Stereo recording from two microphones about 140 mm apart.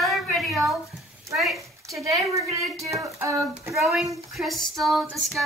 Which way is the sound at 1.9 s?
20° right (ahead or behind).